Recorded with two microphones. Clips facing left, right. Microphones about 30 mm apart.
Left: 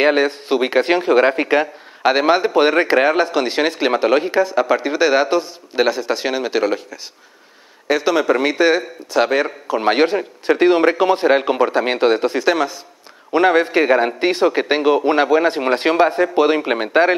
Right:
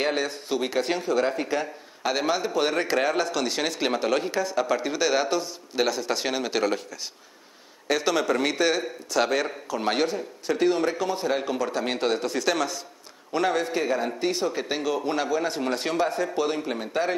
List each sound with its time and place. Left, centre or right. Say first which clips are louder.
0.0 s a man's voice: left 11 dB; left
10.0 s speech: left 10 dB; left
13.3 s speech: left 10 dB; left